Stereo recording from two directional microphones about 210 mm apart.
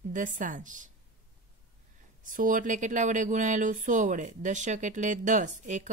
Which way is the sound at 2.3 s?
40° right (ahead or behind).